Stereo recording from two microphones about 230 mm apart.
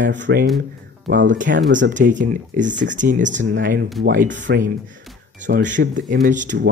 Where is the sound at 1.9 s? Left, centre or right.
Right.